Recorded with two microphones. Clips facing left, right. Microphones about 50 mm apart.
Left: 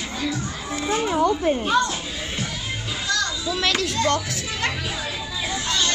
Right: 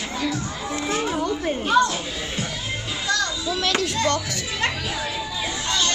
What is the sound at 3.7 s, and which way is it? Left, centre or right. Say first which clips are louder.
Speech: right 1 dB; right.